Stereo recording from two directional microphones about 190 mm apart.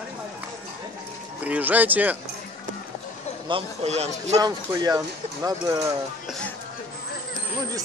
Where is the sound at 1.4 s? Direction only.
10° right (ahead or behind).